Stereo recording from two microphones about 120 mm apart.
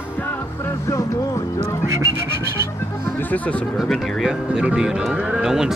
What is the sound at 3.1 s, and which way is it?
Speech, 15° left (ahead or behind).